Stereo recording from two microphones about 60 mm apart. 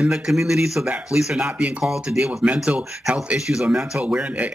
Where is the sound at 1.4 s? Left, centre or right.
Right.